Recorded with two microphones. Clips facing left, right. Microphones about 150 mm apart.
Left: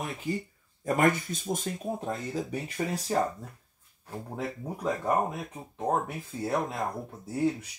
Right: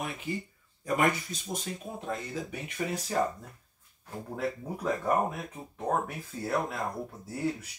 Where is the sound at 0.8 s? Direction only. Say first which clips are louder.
Left 3 dB; 45° left (ahead or behind).